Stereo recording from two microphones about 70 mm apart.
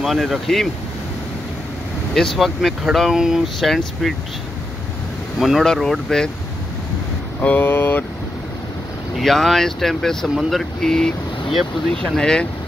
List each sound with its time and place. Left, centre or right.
0.0 s speech: centre
2.1 s speech: centre
3.5 s speech: centre
5.4 s speech: centre
7.4 s speech: left
9.2 s speech: centre